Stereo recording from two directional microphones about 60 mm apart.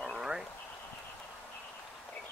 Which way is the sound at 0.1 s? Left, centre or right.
Centre.